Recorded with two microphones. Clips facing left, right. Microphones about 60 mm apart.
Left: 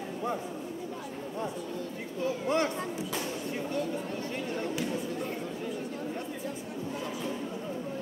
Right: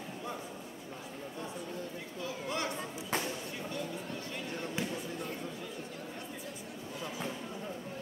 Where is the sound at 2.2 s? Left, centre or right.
Left.